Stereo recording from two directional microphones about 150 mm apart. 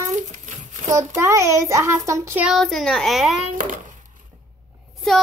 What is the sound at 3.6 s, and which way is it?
Speech, 65° right (ahead or behind).